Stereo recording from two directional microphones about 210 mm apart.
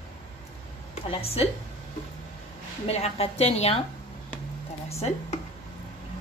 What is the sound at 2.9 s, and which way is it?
Speech, 30° left (ahead or behind).